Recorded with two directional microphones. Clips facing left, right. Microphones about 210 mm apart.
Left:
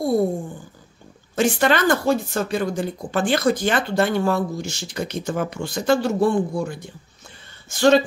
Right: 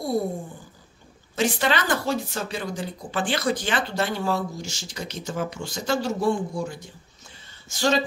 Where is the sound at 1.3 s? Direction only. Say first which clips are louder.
Left 5 dB; 50° left (ahead or behind).